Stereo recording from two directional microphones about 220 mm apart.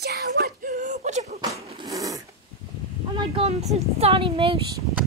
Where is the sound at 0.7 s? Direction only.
35° right (ahead or behind).